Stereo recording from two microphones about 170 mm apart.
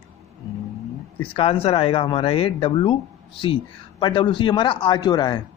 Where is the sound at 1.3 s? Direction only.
35° left (ahead or behind).